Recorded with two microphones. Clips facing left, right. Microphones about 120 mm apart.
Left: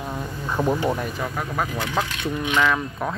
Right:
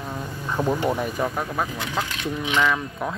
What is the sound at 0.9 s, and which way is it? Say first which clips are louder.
Speech: right 1 dB; 5° right (ahead or behind).